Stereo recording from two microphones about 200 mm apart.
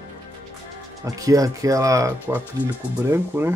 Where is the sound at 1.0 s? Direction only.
15° right (ahead or behind).